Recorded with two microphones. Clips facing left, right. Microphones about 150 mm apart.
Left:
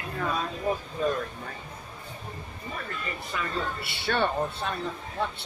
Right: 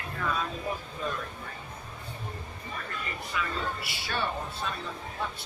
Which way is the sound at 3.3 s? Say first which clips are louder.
Even; 40° left (ahead or behind).